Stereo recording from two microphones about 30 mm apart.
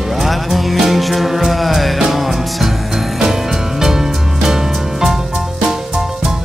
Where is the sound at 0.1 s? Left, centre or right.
Centre.